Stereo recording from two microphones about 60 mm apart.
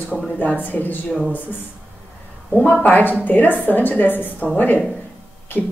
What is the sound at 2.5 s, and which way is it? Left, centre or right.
A woman's voice, left.